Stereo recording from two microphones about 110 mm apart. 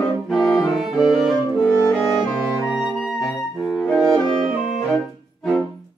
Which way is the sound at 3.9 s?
5° left (ahead or behind).